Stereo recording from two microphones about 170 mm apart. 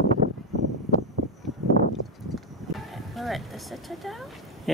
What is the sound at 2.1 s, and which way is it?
Speech, centre (ahead or behind).